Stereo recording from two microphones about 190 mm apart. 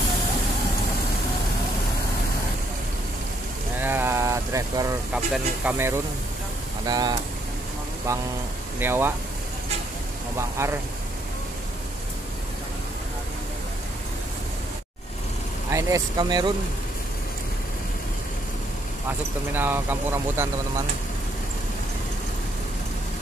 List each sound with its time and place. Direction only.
3.8 s a sound: 10° right (ahead or behind)
5.1 s speech: 5° right (ahead or behind)
6.9 s speech: 20° right (ahead or behind)
10.3 s speech: 15° right (ahead or behind)
15.7 s speech: 20° right (ahead or behind)
19.5 s speech: 10° right (ahead or behind)